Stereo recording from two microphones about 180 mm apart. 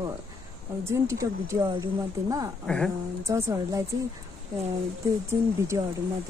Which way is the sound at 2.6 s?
5° left (ahead or behind).